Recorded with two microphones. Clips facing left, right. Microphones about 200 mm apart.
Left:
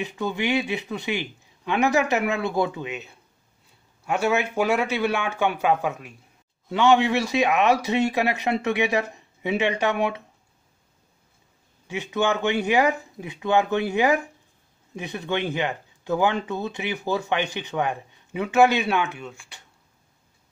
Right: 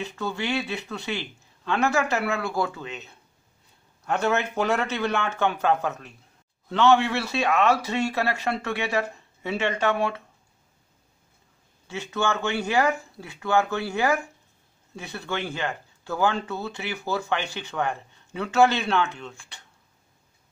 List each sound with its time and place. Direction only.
0.0 s speech: 15° left (ahead or behind)
11.9 s speech: 15° left (ahead or behind)